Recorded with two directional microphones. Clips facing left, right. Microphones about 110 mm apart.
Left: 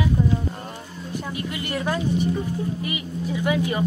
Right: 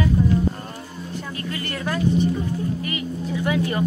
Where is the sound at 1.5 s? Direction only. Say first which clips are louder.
Left 1 dB; 15° left (ahead or behind).